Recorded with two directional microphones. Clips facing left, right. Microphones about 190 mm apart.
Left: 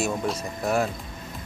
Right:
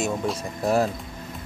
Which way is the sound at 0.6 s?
35° right (ahead or behind).